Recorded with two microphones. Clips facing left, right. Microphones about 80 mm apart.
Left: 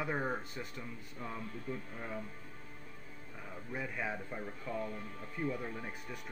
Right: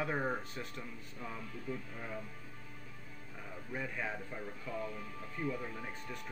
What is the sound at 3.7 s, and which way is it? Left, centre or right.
Speech, centre.